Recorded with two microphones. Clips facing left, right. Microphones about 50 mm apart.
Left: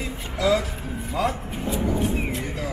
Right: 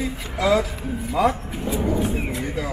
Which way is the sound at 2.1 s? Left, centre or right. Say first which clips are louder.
Right 2 dB; centre.